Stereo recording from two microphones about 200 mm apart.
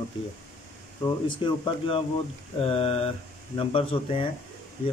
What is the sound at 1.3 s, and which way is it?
Speech, 25° left (ahead or behind).